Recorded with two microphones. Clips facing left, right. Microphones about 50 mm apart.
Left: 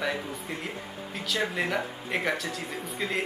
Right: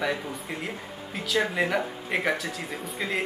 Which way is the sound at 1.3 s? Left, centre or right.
Centre.